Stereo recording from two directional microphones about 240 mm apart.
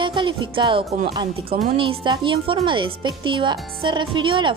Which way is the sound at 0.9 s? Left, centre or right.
Right.